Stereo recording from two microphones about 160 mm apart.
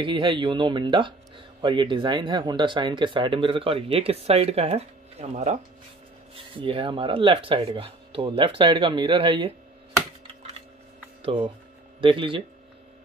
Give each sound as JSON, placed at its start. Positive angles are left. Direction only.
{"t": 0.0, "sound": "speech", "side_deg": -30}
{"t": 6.6, "sound": "speech", "side_deg": -35}
{"t": 11.2, "sound": "speech", "side_deg": -30}